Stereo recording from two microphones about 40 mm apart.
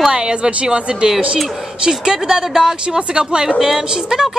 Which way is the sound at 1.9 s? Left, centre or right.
Centre.